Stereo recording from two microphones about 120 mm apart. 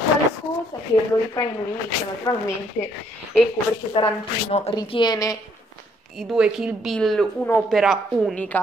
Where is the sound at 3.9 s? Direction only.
45° left (ahead or behind).